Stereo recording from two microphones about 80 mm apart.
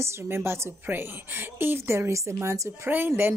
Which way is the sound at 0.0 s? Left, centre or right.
Right.